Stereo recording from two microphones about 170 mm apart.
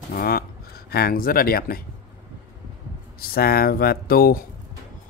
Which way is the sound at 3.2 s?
65° left (ahead or behind).